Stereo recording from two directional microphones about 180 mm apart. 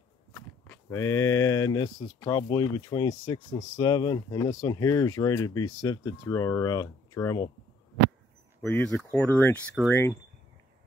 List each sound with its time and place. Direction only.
0.8 s speech: 15° left (ahead or behind)
8.6 s speech: 5° left (ahead or behind)